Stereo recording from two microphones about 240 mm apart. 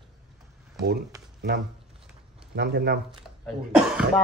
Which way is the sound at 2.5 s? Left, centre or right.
Right.